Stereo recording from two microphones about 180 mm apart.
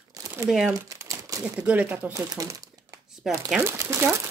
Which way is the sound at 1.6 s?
10° right (ahead or behind).